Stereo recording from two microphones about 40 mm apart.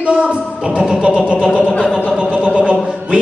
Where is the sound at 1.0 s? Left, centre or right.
Right.